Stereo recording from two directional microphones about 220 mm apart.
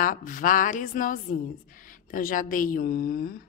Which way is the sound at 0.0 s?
40° left (ahead or behind).